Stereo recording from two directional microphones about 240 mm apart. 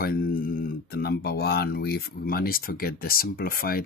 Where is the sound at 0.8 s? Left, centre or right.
Left.